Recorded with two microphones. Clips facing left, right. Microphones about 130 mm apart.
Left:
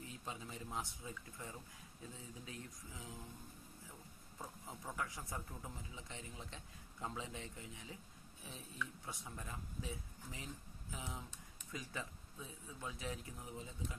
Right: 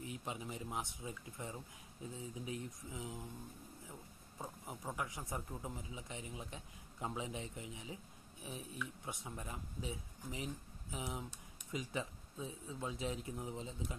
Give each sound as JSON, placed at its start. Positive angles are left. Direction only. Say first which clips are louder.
{"t": 0.0, "sound": "a man's voice", "louder": "right 4 dB", "side_deg": -20}
{"t": 4.4, "sound": "a man's voice", "louder": "right 3 dB", "side_deg": -15}